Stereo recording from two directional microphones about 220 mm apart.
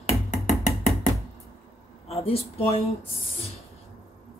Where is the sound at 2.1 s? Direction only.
25° left (ahead or behind).